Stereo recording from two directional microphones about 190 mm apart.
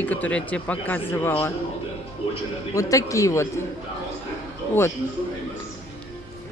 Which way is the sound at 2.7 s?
15° left (ahead or behind).